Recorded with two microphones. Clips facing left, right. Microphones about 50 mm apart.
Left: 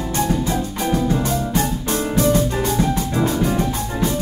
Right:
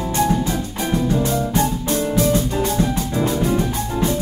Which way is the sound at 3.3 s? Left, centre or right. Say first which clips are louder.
Even; centre.